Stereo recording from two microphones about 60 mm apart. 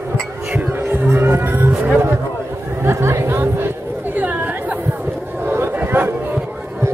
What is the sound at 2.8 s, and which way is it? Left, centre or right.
Chatter, right.